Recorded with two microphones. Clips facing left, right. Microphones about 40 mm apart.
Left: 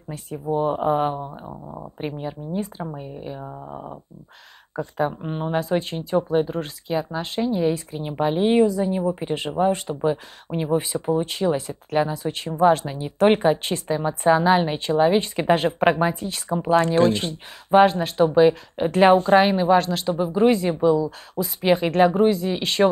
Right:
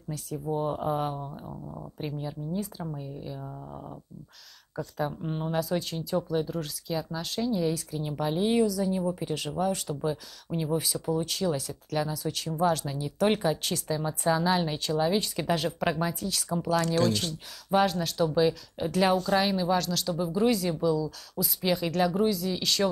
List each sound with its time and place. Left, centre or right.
0.1 s speech: left